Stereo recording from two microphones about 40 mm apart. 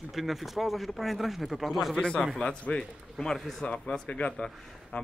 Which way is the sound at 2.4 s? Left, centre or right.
Left.